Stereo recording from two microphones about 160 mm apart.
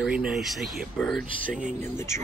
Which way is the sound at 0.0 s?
5° right (ahead or behind).